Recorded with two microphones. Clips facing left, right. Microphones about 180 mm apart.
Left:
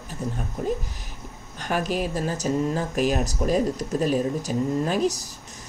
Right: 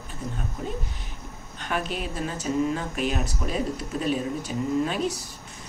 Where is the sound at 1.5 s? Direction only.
45° left (ahead or behind).